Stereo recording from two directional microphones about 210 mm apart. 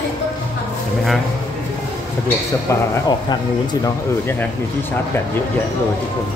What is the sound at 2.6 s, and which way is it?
Speech, 20° left (ahead or behind).